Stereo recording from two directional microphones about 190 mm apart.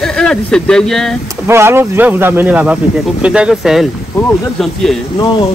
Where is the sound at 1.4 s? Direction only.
15° right (ahead or behind).